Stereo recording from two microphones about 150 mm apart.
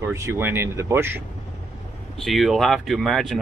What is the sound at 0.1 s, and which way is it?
Speech, 20° right (ahead or behind).